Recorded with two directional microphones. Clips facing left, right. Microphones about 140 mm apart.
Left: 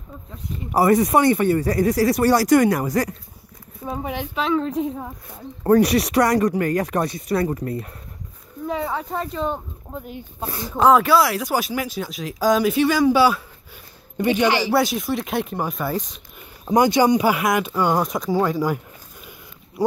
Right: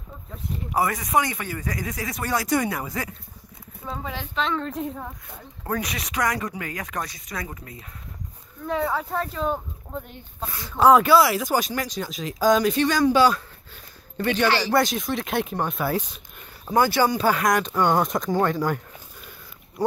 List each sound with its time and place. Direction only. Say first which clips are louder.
0.7 s speech: left 7 dB; 35° left (ahead or behind)
3.8 s speech: left 5 dB; 20° left (ahead or behind)
4.4 s speech: left 5 dB; 5° left (ahead or behind)
5.9 s speech: left 9 dB; 35° left (ahead or behind); by 7.5 s 60° left (ahead or behind)
7.5 s speech: left 14 dB; 45° left (ahead or behind)
8.6 s speech: even; centre (ahead or behind)
10.4 s speech: left 4 dB; 35° left (ahead or behind)
10.8 s speech: even; centre (ahead or behind)
14.7 s speech: left 2 dB; 5° left (ahead or behind)
16.6 s speech: left 4 dB; 20° left (ahead or behind)